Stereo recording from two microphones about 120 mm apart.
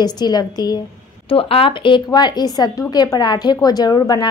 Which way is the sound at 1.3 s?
50° left (ahead or behind).